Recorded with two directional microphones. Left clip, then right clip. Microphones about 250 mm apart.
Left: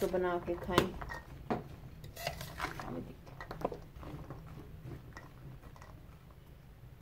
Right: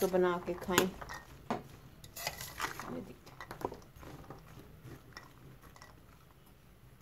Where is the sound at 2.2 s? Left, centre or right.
Centre.